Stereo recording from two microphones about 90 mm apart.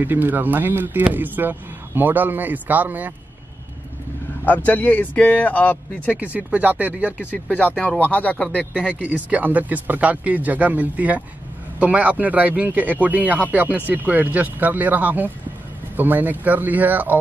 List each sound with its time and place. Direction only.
0.0 s a man's voice: 20° right (ahead or behind)
4.6 s speech: 20° left (ahead or behind)
6.1 s speech: 15° right (ahead or behind)
7.4 s speech: 15° left (ahead or behind)
9.0 s a man's voice: 15° right (ahead or behind)